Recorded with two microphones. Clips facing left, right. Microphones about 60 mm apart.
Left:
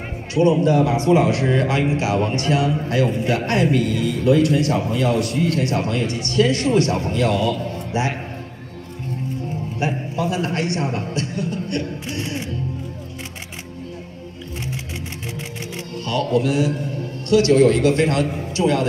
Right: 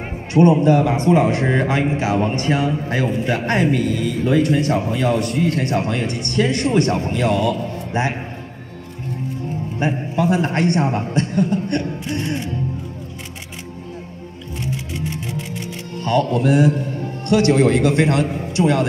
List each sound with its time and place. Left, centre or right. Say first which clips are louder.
0.3 s a man's voice: right 3 dB; right
9.8 s a sound: right 3 dB; right
10.4 s a man's voice: right 4 dB; right
16.0 s a man's voice: right 2 dB; right